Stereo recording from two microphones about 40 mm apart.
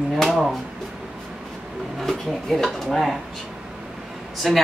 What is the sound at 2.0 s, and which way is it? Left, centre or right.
Speech, centre.